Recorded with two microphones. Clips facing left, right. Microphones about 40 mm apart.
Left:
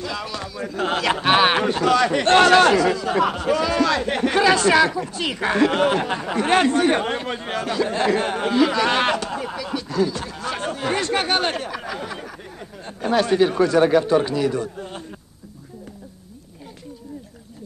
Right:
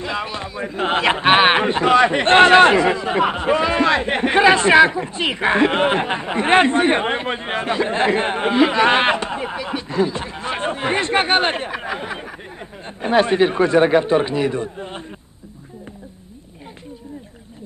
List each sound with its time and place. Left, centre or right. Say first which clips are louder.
0.0 s speech: right 3 dB; right